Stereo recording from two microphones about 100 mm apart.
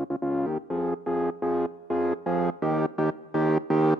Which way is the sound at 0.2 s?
Centre (ahead or behind).